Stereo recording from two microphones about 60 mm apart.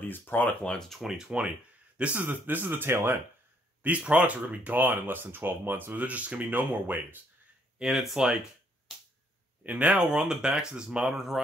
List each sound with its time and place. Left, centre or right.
0.1 s speech: left
0.7 s speech: centre
1.0 s speech: centre
2.0 s speech: right
2.2 s speech: right
3.8 s speech: right
5.9 s speech: right
7.8 s speech: centre
9.6 s speech: right